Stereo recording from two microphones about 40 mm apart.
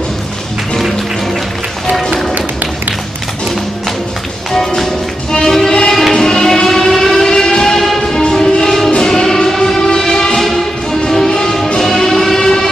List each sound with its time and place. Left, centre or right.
1.9 s music: centre
2.3 s music: right
4.5 s music: centre
6.1 s civil defense siren: centre
8.3 s music: centre